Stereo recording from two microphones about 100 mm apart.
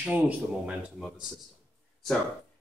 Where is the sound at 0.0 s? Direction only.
15° right (ahead or behind).